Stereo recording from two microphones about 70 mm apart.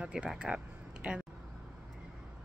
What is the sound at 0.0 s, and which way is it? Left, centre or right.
Speech, centre.